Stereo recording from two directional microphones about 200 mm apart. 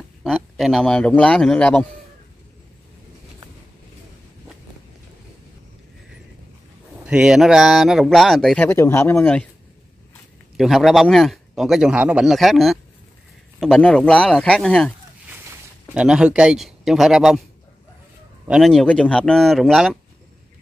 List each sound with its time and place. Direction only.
0.2 s a man's voice: centre (ahead or behind)
7.1 s a man's voice: 5° right (ahead or behind)
8.6 s speech: 10° left (ahead or behind)
10.6 s a man's voice: centre (ahead or behind)
18.5 s a man's voice: centre (ahead or behind)